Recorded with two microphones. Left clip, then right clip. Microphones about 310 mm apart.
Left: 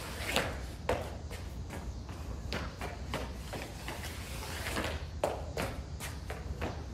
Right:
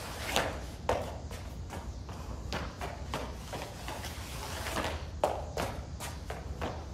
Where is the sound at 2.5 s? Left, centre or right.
Centre.